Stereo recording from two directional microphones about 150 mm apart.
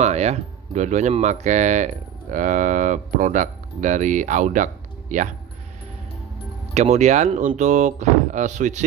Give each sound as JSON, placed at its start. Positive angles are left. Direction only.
{"t": 0.0, "sound": "speech", "side_deg": -50}
{"t": 6.7, "sound": "speech", "side_deg": -50}